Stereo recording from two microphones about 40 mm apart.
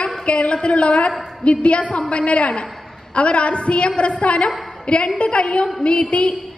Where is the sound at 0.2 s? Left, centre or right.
Left.